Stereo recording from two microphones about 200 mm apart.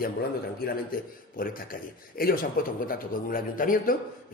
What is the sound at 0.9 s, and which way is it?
Speech, 45° left (ahead or behind).